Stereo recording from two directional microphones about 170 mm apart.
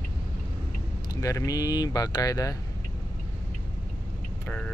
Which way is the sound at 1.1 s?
20° left (ahead or behind).